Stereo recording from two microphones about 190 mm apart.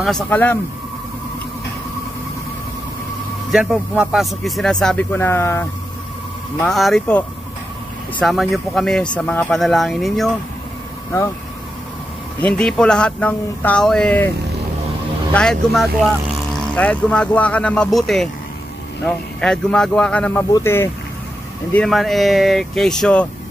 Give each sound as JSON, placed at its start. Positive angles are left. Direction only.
{"t": 0.0, "sound": "a man's voice", "side_deg": 5}
{"t": 3.5, "sound": "speech", "side_deg": -5}
{"t": 6.6, "sound": "speech", "side_deg": 0}
{"t": 12.4, "sound": "speech", "side_deg": 5}
{"t": 15.3, "sound": "a man's voice", "side_deg": 0}
{"t": 21.7, "sound": "speech", "side_deg": 0}